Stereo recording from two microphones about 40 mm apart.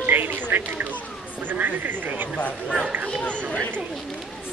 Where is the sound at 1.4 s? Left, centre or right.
Right.